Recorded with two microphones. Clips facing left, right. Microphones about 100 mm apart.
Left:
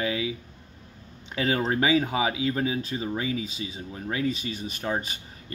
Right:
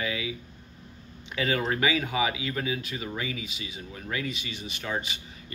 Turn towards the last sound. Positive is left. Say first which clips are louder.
# even
turn(degrees=40)  # may be behind; listen again after turning